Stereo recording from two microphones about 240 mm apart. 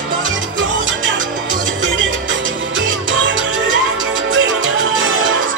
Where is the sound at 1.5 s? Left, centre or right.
Right.